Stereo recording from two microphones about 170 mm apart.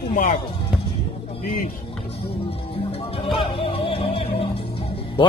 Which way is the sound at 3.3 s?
35° left (ahead or behind).